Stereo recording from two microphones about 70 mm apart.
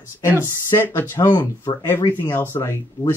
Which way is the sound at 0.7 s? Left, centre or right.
Left.